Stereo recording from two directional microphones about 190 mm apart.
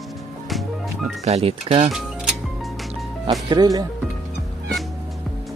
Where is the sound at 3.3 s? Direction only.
20° right (ahead or behind).